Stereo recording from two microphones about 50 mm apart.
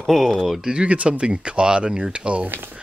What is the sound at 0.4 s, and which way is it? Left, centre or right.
Speech, centre.